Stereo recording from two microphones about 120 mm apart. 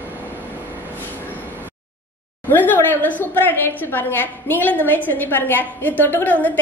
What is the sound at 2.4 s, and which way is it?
A woman's voice, 15° left (ahead or behind).